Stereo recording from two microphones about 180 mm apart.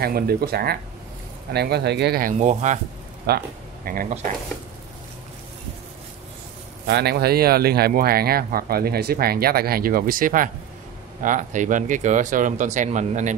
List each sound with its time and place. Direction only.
0.0 s speech: 60° right (ahead or behind)
2.3 s speech: 40° right (ahead or behind)
3.3 s speech: 55° right (ahead or behind)
6.9 s speech: 65° right (ahead or behind); by 13.4 s 40° right (ahead or behind)